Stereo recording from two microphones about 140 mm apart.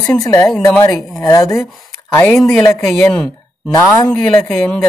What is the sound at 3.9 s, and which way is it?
Speech, 25° left (ahead or behind).